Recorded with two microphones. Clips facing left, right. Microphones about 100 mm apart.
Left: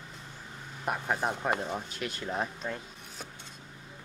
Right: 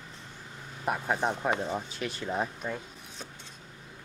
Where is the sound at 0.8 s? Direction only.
Centre (ahead or behind).